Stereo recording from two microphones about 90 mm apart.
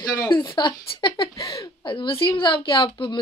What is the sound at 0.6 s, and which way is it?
Speech, 60° left (ahead or behind).